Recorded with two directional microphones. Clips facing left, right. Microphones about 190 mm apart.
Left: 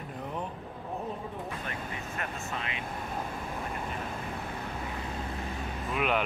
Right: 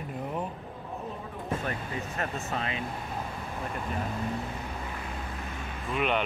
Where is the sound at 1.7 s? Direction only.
35° right (ahead or behind).